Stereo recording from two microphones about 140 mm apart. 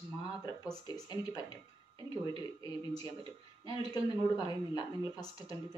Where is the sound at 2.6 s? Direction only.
25° left (ahead or behind).